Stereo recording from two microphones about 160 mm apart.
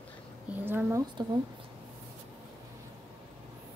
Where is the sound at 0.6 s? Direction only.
15° right (ahead or behind).